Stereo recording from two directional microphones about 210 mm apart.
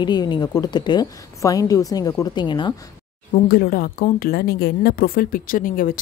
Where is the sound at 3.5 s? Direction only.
45° left (ahead or behind).